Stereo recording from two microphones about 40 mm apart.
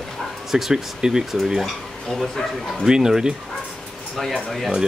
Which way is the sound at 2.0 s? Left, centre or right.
Centre.